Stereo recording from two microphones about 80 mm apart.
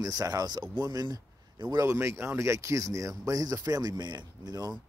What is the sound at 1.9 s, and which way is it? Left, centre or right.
Speech, right.